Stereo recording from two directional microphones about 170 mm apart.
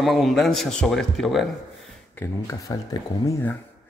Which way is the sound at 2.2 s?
20° left (ahead or behind).